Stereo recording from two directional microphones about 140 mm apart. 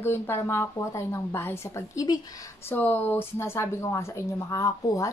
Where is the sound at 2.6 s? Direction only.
15° left (ahead or behind).